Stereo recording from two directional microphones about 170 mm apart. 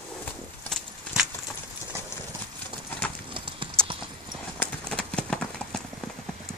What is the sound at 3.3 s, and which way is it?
Clip-clop, 30° right (ahead or behind).